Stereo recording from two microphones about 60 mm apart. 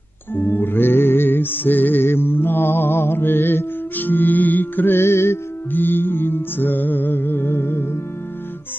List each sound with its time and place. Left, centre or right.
0.3 s music: left
4.9 s music: left
5.8 s music: left